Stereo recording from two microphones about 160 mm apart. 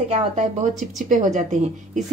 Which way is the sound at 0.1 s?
45° right (ahead or behind).